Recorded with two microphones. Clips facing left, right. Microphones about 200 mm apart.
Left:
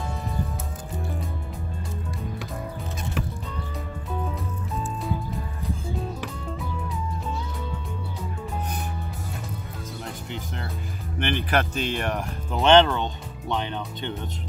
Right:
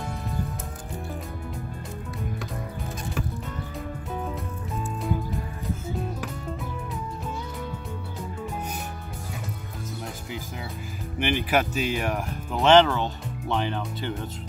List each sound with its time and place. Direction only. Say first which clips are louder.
10.0 s music: left 1 dB; 5° right (ahead or behind)
11.1 s speech: right 1 dB; 10° right (ahead or behind)